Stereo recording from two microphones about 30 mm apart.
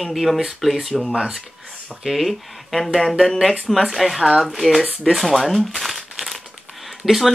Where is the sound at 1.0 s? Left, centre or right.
Right.